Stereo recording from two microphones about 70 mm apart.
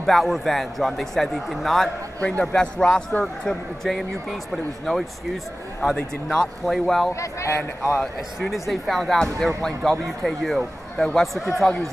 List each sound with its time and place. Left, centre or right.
0.0 s a man's voice: centre
2.1 s a man's voice: left; by 7.1 s centre
7.2 s speech: left
8.0 s a man's voice: centre